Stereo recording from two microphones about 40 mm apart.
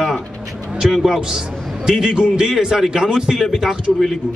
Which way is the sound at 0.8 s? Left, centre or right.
Centre.